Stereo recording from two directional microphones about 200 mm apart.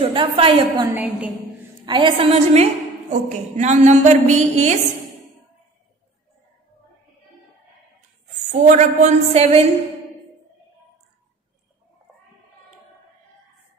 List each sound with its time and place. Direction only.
0.0 s a woman's voice: 25° right (ahead or behind)
0.9 s a woman's voice: 10° right (ahead or behind)
1.9 s a woman's voice: 25° right (ahead or behind)
8.5 s a woman's voice: 35° right (ahead or behind)